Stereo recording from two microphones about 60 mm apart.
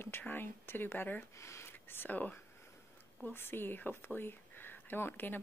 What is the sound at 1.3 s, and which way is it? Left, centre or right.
Speech, left.